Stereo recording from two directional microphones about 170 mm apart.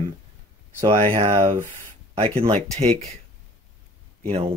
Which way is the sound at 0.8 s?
35° right (ahead or behind).